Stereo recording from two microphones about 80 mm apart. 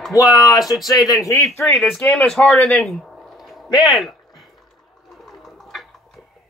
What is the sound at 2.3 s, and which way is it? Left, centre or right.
Speech, centre.